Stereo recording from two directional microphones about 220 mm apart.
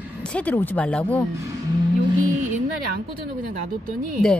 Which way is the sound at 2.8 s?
45° right (ahead or behind).